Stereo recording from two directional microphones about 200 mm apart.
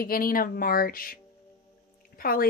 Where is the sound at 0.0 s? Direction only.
45° left (ahead or behind).